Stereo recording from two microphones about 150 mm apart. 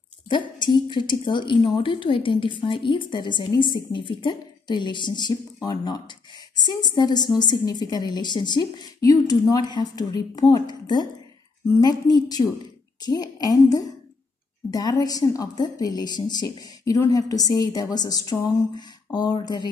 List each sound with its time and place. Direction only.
0.3 s a woman's voice: 30° left (ahead or behind)